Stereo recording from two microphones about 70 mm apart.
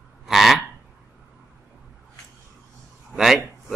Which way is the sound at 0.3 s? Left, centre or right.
Centre.